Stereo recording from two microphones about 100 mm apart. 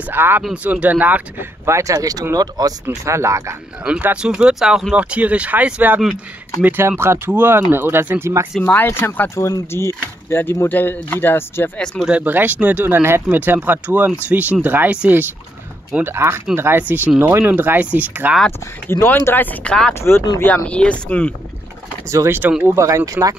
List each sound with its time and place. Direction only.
0.1 s speech: 20° right (ahead or behind)
1.7 s speech: 35° right (ahead or behind)
3.1 s speech: 30° right (ahead or behind)
3.8 s speech: 10° right (ahead or behind)
8.6 s speech: 20° left (ahead or behind)
12.0 s speech: 15° right (ahead or behind)
18.9 s speech: 25° left (ahead or behind)
19.9 s speech: 25° left (ahead or behind)
20.6 s speech: 10° left (ahead or behind)
22.1 s speech: 30° right (ahead or behind)